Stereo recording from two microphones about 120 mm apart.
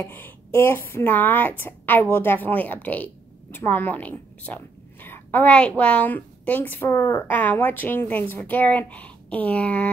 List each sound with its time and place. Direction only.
0.0 s a woman's voice: 15° left (ahead or behind)